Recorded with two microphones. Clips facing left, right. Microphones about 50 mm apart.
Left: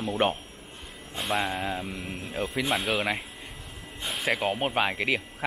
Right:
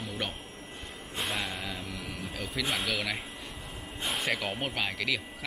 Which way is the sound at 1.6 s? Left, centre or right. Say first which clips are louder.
Left 5 dB; left.